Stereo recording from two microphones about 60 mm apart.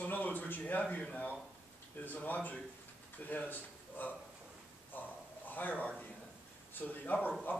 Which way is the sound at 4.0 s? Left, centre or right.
Left.